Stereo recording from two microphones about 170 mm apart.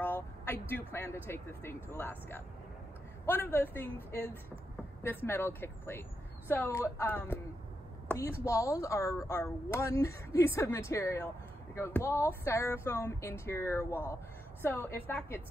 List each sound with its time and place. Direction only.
0.0 s speech: 15° left (ahead or behind)